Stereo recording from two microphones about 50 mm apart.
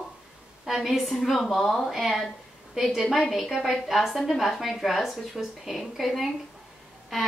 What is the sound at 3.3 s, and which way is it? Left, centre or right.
A woman's voice, centre.